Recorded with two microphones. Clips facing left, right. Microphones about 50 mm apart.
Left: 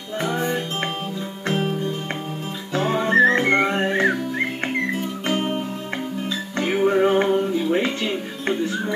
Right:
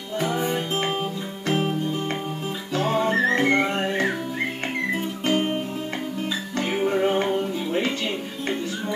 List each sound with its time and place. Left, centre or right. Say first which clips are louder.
1.5 s music: even; centre
2.9 s music: left 5 dB; left
6.6 s music: left 4 dB; centre